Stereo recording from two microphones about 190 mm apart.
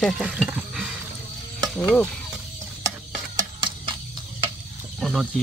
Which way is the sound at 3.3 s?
25° right (ahead or behind).